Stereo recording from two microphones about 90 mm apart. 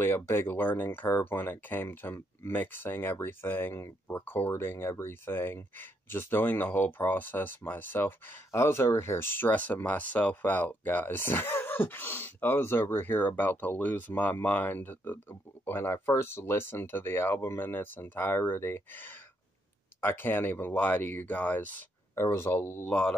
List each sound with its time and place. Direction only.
0.0 s speech: 30° left (ahead or behind)
22.1 s speech: 30° left (ahead or behind)
22.8 s speech: 10° left (ahead or behind)